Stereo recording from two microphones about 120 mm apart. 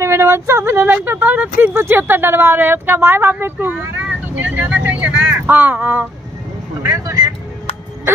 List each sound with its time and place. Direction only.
0.0 s speech: 20° right (ahead or behind)
6.8 s speech: 25° right (ahead or behind)